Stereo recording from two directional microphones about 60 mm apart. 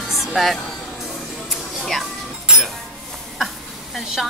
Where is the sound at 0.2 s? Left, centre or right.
Centre.